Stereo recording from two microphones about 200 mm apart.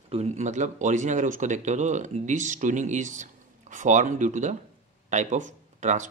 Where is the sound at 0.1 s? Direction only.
35° right (ahead or behind).